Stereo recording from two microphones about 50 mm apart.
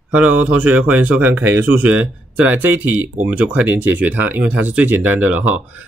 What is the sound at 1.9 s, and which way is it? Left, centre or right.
Speech, right.